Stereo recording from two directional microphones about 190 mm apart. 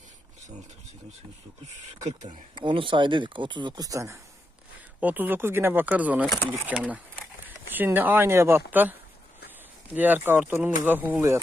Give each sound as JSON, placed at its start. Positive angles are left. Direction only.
{"t": 2.5, "sound": "speech", "side_deg": -25}
{"t": 9.9, "sound": "speech", "side_deg": -10}